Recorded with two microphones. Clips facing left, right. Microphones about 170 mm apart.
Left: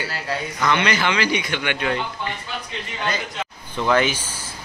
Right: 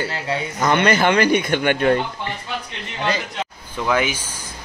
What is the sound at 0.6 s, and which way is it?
Speech, 50° right (ahead or behind).